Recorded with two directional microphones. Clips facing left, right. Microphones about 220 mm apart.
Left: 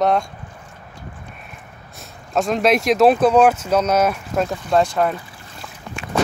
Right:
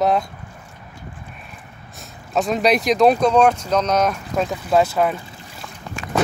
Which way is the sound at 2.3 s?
Centre (ahead or behind).